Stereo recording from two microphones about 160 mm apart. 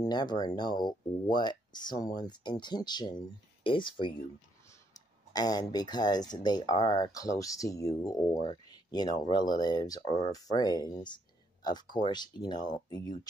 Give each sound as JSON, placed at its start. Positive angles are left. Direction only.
{"t": 0.0, "sound": "speech", "side_deg": 25}